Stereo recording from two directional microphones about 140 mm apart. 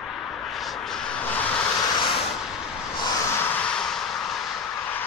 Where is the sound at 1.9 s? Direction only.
35° left (ahead or behind).